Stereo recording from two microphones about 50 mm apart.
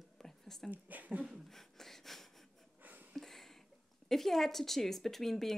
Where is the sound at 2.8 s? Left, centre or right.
Right.